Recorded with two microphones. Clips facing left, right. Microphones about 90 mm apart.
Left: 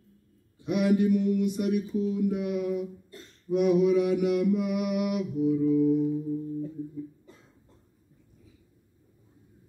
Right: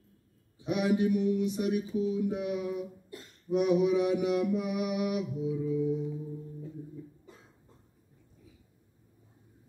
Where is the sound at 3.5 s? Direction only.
20° right (ahead or behind).